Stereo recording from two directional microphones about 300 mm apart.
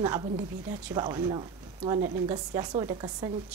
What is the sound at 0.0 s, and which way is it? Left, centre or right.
A woman's voice, centre.